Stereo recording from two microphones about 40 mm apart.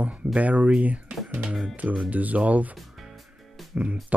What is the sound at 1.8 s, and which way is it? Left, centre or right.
Speech, right.